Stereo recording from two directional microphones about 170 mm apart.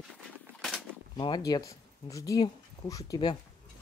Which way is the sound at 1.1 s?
25° left (ahead or behind).